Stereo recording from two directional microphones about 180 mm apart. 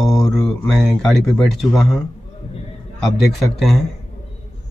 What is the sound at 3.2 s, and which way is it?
Speech, centre (ahead or behind).